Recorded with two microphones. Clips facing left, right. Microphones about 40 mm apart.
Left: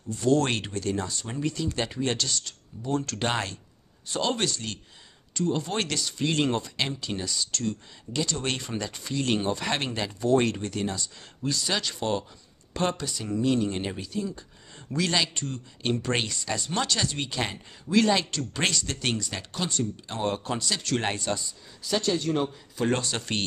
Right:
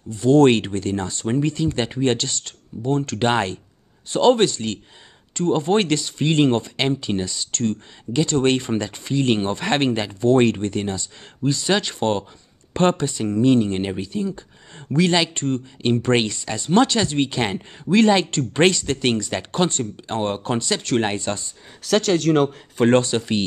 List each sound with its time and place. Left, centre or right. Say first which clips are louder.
0.1 s speech: right 9 dB; right
21.8 s speech: right 8 dB; right
22.8 s speech: right 10 dB; right